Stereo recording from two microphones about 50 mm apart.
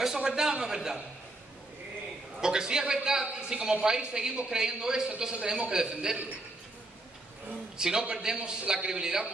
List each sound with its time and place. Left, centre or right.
0.0 s a man's voice: centre
2.4 s a man's voice: centre
7.7 s a man's voice: centre